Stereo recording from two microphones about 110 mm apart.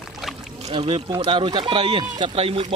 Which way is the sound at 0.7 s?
60° right (ahead or behind).